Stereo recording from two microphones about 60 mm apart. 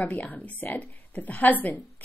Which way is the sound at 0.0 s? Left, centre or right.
Left.